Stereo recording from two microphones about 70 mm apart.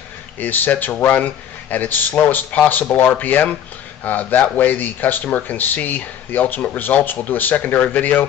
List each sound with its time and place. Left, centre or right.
0.4 s speech: left